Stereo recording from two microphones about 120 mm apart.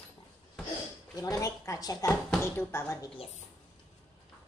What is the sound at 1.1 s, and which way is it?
Speech, 30° left (ahead or behind).